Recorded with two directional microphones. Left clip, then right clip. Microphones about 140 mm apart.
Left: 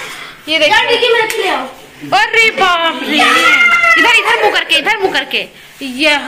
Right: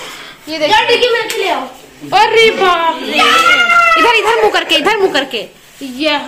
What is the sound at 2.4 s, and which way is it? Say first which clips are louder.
Speech: right 1 dB; 20° right (ahead or behind).